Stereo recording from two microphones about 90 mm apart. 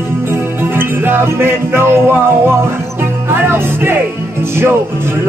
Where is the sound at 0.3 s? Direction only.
25° right (ahead or behind).